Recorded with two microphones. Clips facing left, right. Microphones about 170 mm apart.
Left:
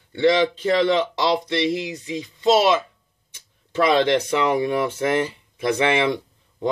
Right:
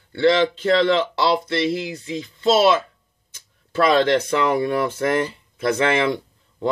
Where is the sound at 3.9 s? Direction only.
15° left (ahead or behind).